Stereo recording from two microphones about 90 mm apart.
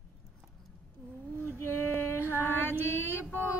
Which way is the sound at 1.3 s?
25° left (ahead or behind).